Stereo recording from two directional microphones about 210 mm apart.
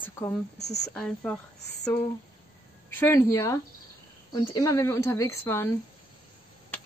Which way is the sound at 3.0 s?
15° left (ahead or behind).